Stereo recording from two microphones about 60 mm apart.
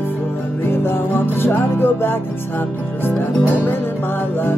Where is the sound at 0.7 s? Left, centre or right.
Left.